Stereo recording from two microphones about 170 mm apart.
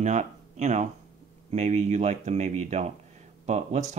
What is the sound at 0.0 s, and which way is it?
Speech, 45° right (ahead or behind).